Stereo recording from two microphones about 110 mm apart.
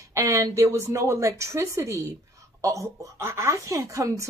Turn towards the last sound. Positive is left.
turn(degrees=-30)  # may be behind; listen again after turning